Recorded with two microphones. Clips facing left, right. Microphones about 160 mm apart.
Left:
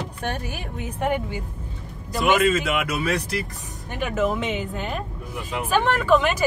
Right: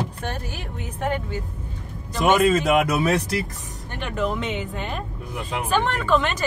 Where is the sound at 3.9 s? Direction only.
5° left (ahead or behind).